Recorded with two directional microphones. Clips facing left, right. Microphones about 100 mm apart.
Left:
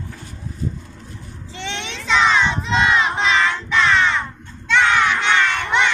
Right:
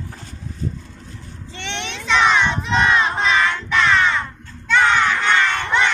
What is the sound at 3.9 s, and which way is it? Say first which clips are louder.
Music: even; centre (ahead or behind).